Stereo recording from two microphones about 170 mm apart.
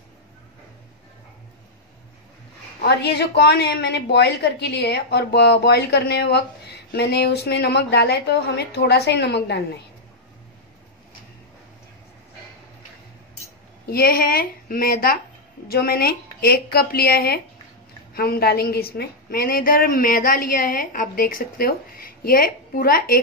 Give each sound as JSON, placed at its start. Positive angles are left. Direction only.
{"t": 2.8, "sound": "a woman's voice", "side_deg": 75}
{"t": 13.8, "sound": "a woman's voice", "side_deg": 65}